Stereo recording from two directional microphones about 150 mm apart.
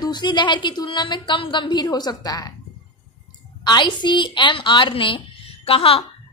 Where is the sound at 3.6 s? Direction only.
30° left (ahead or behind).